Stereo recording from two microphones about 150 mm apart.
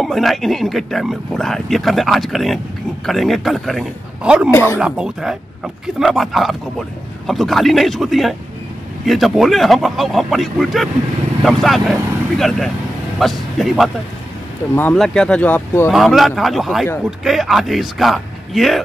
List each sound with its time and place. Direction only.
0.0 s speech: centre (ahead or behind)
4.5 s speech: 15° left (ahead or behind)
4.7 s speech: 5° right (ahead or behind); by 15.9 s 15° left (ahead or behind)
15.9 s speech: centre (ahead or behind)